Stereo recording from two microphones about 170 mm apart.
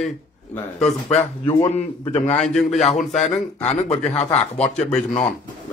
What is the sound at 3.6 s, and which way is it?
Speech, 40° left (ahead or behind).